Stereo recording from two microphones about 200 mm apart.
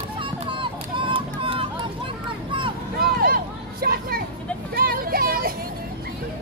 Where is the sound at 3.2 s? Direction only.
45° right (ahead or behind).